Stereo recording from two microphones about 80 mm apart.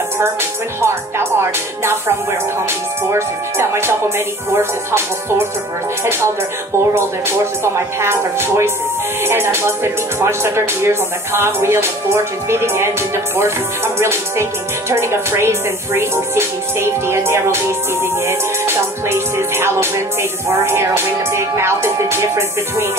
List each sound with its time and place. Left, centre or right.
0.7 s speech: right
3.1 s speech: right
7.0 s speech: right